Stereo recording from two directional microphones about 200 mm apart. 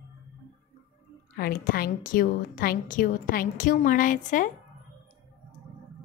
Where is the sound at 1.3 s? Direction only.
45° left (ahead or behind).